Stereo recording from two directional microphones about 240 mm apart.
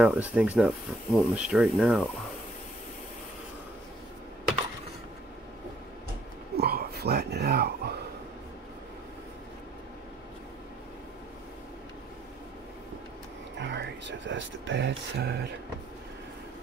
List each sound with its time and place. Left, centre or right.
0.0 s speech: centre
6.5 s a sound: right
13.6 s speech: right